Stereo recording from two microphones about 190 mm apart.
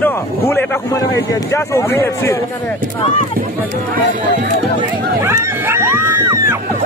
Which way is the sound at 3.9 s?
60° right (ahead or behind).